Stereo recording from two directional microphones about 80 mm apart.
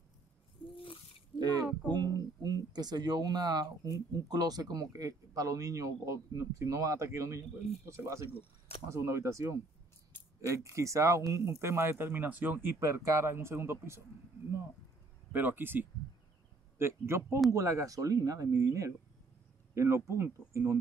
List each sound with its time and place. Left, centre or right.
1.4 s a sound: right
1.9 s speech: right
12.8 s speech: right
15.3 s speech: right